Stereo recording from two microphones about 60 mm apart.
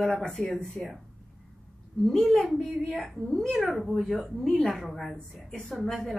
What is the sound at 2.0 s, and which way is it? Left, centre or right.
A woman's voice, centre.